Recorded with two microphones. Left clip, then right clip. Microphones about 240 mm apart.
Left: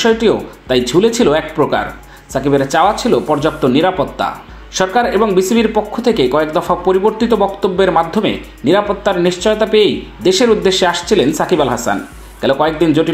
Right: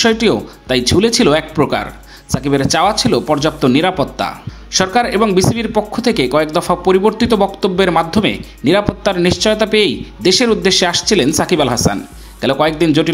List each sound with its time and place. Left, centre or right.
0.0 s speech: right